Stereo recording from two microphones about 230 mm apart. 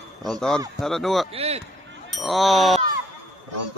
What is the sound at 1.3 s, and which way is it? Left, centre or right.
Speech, right.